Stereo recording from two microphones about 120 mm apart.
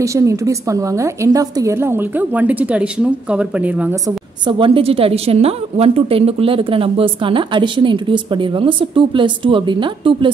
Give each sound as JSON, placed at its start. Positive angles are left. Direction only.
{"t": 0.0, "sound": "a woman's voice", "side_deg": -25}
{"t": 4.5, "sound": "a woman's voice", "side_deg": -45}